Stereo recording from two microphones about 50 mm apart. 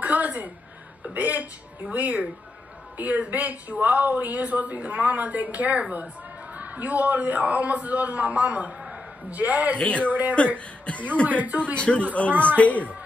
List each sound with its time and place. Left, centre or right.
0.0 s a sound: right
1.1 s speech: right
9.8 s a man's voice: left
11.2 s speech: right
11.6 s a man's voice: left